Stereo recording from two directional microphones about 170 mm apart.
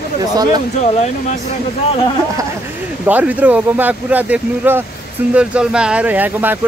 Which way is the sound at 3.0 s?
10° right (ahead or behind).